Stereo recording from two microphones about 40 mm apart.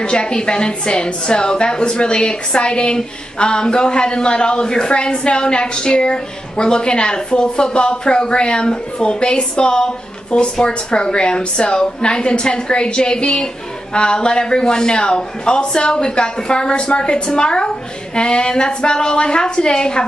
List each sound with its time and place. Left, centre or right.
0.0 s a man's voice: left